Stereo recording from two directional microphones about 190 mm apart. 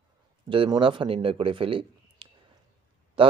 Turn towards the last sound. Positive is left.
turn(degrees=-30)  # may be behind; listen again after turning